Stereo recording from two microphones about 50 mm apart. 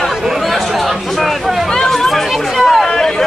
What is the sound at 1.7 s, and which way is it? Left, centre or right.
Chatter, centre.